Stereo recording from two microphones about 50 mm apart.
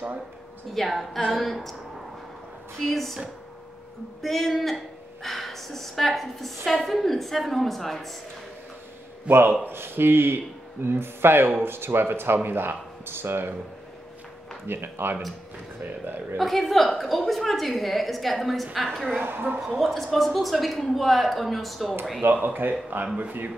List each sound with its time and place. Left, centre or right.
0.7 s speech: centre
2.9 s speech: centre
4.2 s speech: centre
9.3 s a man's voice: right
9.7 s speech: right
14.7 s speech: right
16.3 s a woman's voice: centre
19.1 s speech: right
19.8 s speech: centre
22.2 s speech: right